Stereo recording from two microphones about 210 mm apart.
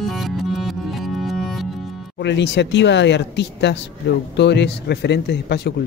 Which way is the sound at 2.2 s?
55° left (ahead or behind).